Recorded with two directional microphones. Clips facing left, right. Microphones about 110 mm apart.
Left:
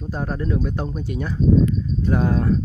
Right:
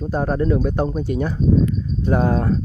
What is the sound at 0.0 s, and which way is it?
Speech, 50° right (ahead or behind).